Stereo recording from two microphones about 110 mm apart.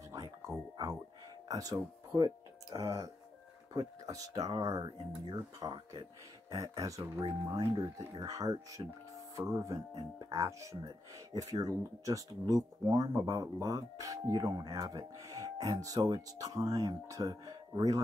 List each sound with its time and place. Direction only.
0.1 s music: 30° right (ahead or behind)
1.5 s speech: 35° right (ahead or behind)